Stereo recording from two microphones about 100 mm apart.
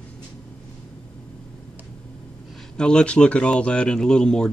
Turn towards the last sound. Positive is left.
turn(degrees=10)  # may be behind; listen again after turning